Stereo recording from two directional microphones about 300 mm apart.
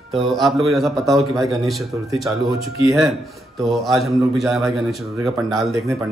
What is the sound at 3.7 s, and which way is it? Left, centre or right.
Speech, centre.